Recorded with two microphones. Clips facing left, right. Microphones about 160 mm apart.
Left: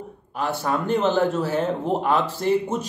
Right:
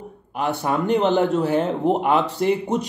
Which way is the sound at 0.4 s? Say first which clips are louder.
Right 2 dB; 15° right (ahead or behind).